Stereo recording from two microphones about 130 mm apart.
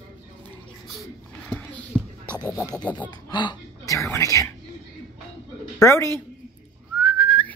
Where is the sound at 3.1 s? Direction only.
35° left (ahead or behind).